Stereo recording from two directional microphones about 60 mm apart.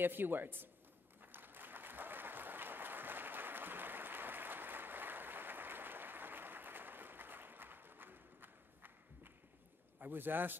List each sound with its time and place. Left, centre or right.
0.0 s a man's voice: right
1.2 s applause: right
9.9 s a man's voice: right